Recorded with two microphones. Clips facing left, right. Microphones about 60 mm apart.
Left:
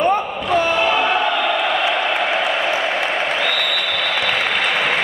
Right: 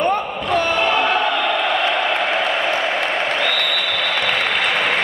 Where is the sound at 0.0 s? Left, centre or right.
Centre.